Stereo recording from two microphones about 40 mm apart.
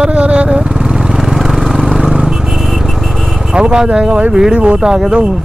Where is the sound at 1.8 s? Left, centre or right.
Centre.